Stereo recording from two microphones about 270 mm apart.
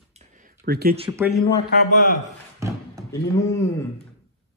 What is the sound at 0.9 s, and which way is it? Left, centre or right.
Speech, centre.